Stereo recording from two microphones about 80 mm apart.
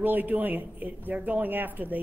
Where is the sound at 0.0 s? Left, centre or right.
Right.